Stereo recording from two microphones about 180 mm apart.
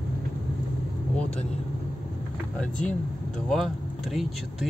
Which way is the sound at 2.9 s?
Centre (ahead or behind).